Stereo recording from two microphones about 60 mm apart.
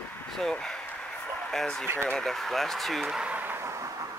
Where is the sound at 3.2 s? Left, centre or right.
Right.